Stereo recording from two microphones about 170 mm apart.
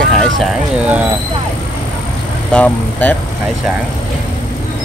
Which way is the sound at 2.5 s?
10° left (ahead or behind).